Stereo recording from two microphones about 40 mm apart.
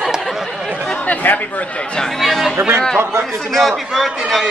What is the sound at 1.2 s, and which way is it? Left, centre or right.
Speech, left.